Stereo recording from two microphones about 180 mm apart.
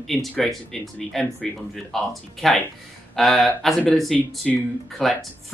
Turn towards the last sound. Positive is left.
turn(degrees=0)  # may be behind; listen again after turning